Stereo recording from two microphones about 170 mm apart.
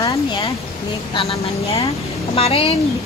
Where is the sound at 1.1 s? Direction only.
35° left (ahead or behind).